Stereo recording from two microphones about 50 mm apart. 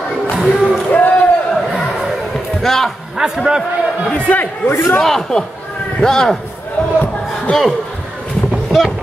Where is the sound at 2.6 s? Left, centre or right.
Centre.